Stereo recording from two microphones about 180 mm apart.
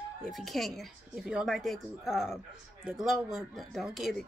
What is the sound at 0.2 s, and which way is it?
Speech, centre (ahead or behind).